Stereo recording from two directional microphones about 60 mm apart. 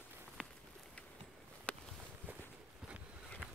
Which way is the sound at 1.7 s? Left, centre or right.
Left.